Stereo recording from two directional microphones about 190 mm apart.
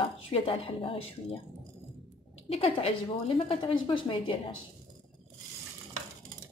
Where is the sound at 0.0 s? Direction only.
30° left (ahead or behind).